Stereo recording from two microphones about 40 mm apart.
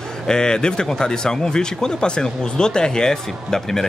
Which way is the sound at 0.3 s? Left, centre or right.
Centre.